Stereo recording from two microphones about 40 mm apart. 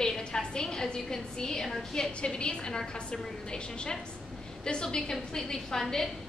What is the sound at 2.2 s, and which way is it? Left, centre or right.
A woman's voice, left.